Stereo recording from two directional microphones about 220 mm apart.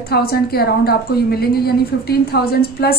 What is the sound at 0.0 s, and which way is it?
A woman's voice, 45° left (ahead or behind).